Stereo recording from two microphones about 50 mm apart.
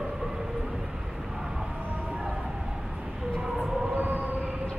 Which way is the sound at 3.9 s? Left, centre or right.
Right.